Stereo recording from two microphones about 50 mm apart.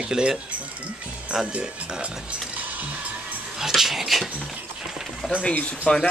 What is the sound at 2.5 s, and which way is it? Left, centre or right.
Music, right.